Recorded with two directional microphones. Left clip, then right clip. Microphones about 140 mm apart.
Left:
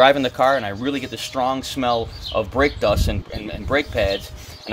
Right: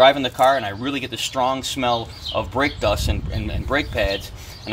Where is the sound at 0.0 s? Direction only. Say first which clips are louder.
Even; 50° left (ahead or behind).